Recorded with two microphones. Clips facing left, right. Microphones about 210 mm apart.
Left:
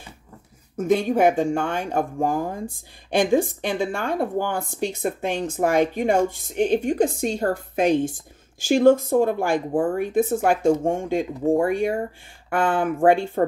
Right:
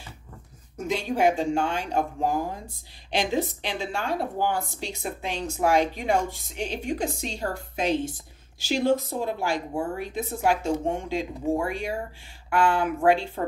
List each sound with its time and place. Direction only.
0.7 s speech: 55° left (ahead or behind)